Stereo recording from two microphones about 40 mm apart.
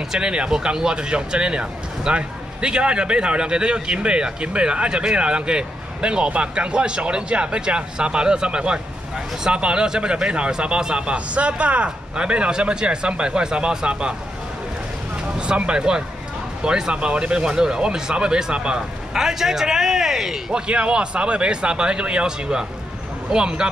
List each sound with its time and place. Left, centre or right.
0.1 s speech: right
15.3 s speech: right
18.8 s a man's voice: centre
20.5 s speech: right